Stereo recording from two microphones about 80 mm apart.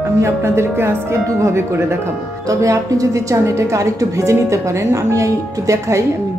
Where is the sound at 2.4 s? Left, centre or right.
Right.